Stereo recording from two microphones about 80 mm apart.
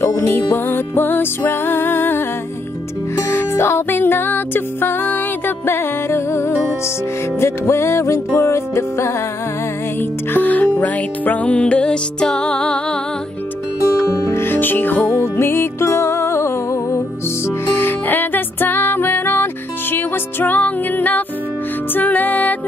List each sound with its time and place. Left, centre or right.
0.0 s music: left
3.3 s music: left
10.3 s music: left
13.8 s music: left